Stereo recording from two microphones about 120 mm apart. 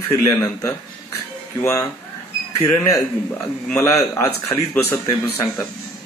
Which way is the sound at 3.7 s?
25° left (ahead or behind).